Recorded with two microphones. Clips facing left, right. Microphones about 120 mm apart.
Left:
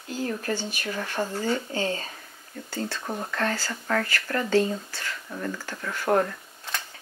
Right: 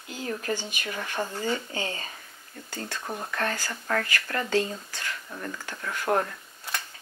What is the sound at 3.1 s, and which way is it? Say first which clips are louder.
Speech: left 1 dB; 20° left (ahead or behind).